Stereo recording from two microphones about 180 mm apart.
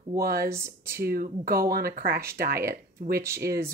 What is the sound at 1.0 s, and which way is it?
Speech, 55° right (ahead or behind).